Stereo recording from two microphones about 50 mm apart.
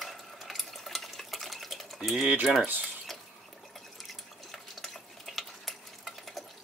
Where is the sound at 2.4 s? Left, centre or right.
Centre.